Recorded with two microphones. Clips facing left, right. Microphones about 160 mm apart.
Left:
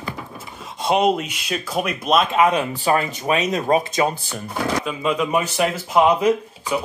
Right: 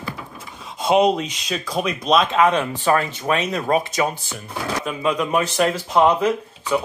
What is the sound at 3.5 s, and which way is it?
Speech, 30° left (ahead or behind).